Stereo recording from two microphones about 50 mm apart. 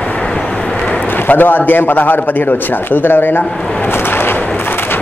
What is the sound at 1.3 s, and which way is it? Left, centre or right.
A man's voice, left.